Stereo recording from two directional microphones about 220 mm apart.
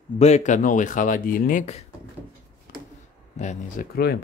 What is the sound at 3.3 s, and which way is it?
Speech, 35° left (ahead or behind).